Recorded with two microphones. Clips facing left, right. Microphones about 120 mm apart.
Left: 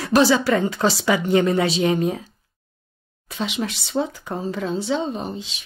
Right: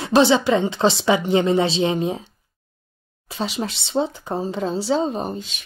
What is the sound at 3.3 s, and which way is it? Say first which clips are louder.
Speech: even; 30° right (ahead or behind).